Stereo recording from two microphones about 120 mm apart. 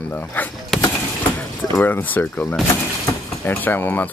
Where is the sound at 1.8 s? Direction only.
15° left (ahead or behind).